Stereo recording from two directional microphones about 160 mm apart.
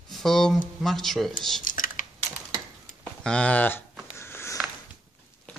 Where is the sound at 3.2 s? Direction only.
5° left (ahead or behind).